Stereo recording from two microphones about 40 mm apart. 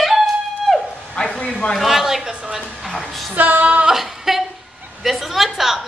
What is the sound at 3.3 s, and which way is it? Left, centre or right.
Female singing, right.